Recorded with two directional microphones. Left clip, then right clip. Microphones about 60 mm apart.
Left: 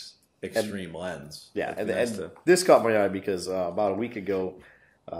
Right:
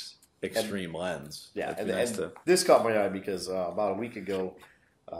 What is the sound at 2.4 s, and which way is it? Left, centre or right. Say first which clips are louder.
Speech: left 3 dB; left.